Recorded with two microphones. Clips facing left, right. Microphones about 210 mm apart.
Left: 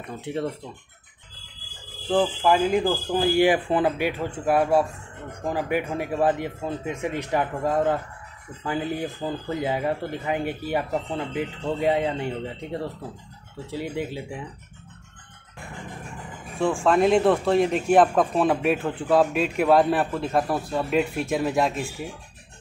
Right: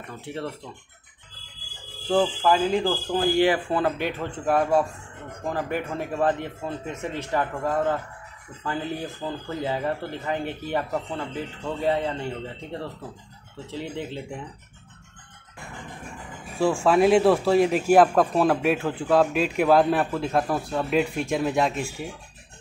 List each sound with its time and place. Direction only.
0.1 s speech: 20° left (ahead or behind)
2.0 s speech: 5° left (ahead or behind)
13.7 s speech: 10° left (ahead or behind)
16.8 s speech: 5° right (ahead or behind)